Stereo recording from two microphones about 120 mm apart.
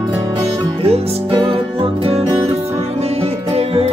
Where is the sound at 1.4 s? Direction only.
50° right (ahead or behind).